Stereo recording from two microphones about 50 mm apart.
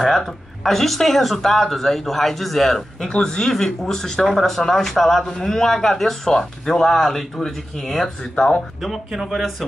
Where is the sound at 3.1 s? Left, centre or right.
Centre.